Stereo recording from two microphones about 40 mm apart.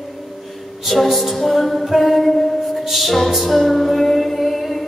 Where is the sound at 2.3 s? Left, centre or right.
Centre.